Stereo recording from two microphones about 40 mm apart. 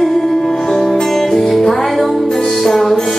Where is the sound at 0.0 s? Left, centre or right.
Centre.